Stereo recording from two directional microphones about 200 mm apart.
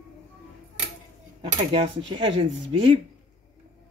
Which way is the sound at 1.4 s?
40° right (ahead or behind).